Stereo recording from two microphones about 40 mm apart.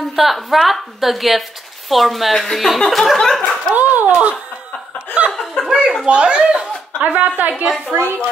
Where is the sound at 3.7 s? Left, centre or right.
Right.